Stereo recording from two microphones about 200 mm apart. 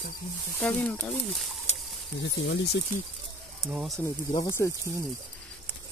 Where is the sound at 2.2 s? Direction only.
60° left (ahead or behind).